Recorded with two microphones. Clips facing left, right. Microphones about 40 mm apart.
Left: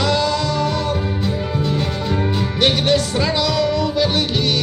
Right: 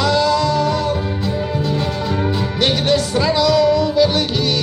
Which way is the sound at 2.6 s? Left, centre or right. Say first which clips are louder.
Even; left.